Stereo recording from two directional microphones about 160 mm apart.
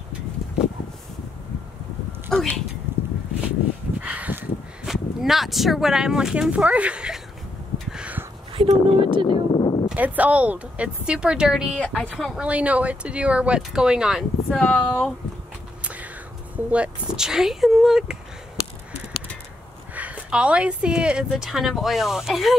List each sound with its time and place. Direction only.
2.3 s speech: 5° left (ahead or behind)
2.9 s a sound: 15° right (ahead or behind)
4.0 s speech: 10° right (ahead or behind)
7.9 s a sound: 10° right (ahead or behind)
8.5 s speech: 30° right (ahead or behind)
9.3 s a sound: 30° left (ahead or behind)
9.8 s speech: 10° right (ahead or behind)
11.8 s speech: 5° left (ahead or behind)
12.4 s speech: 10° right (ahead or behind)
14.6 s speech: 5° left (ahead or behind)
15.8 s whispering: 10° right (ahead or behind)
16.5 s speech: 5° right (ahead or behind)
19.9 s speech: 10° right (ahead or behind)